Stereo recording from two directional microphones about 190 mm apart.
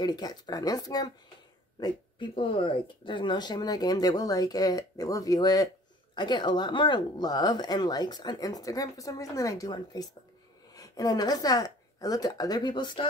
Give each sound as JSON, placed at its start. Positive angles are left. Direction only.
{"t": 0.0, "sound": "speech", "side_deg": 20}